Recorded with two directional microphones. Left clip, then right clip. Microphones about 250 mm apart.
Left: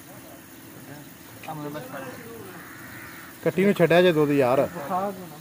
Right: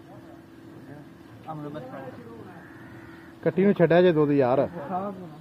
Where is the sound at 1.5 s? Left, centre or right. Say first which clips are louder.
Left 2 dB; left.